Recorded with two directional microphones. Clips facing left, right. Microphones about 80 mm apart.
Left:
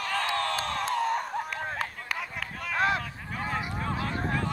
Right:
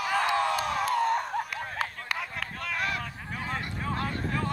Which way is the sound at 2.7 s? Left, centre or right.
Left.